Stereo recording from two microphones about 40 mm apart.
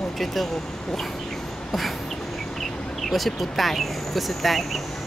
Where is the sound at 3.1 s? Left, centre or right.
Centre.